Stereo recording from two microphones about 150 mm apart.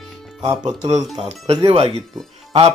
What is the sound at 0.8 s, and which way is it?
Speech, 50° right (ahead or behind).